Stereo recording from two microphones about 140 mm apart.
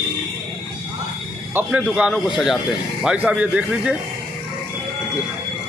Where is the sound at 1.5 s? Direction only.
10° right (ahead or behind).